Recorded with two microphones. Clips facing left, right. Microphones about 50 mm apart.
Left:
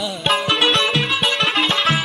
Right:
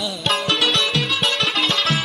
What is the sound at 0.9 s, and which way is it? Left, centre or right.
Music, centre.